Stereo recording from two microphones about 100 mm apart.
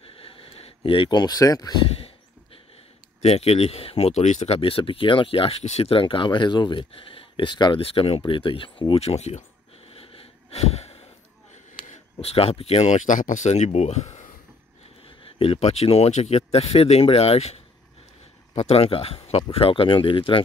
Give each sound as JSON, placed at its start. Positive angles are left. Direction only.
{"t": 0.1, "sound": "a sound", "side_deg": 70}
{"t": 2.0, "sound": "a sound", "side_deg": 75}
{"t": 3.2, "sound": "speech", "side_deg": 90}
{"t": 7.8, "sound": "speech", "side_deg": 70}
{"t": 9.8, "sound": "wheeze", "side_deg": 75}
{"t": 12.2, "sound": "speech", "side_deg": 85}
{"t": 15.2, "sound": "speech", "side_deg": 65}
{"t": 18.6, "sound": "speech", "side_deg": 85}
{"t": 19.5, "sound": "speech", "side_deg": 65}